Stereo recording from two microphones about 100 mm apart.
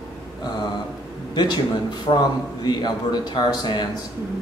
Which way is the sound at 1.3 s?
45° left (ahead or behind).